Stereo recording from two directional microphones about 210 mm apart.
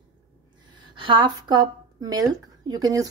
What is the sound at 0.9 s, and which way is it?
Speech, 25° right (ahead or behind).